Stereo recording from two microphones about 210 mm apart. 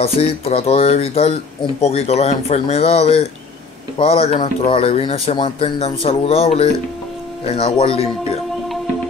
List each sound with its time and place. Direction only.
0.0 s speech: 30° left (ahead or behind)